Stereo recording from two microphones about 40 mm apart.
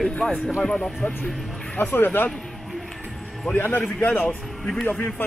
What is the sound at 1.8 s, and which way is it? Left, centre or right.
Speech, left.